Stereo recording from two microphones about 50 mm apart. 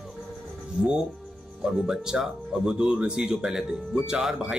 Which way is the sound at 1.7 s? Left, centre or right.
Centre.